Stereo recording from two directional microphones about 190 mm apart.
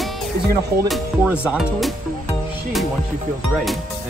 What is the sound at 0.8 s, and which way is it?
Speech, 5° right (ahead or behind).